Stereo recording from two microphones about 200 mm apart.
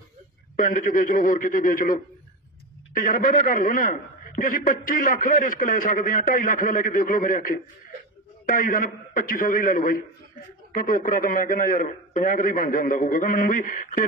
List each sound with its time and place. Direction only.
0.6 s a man's voice: 40° left (ahead or behind)